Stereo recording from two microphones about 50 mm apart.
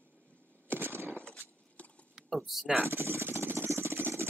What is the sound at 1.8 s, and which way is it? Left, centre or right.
Mechanisms, left.